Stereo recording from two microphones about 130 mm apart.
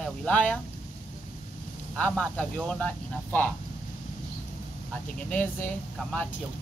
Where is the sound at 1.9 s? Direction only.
10° left (ahead or behind).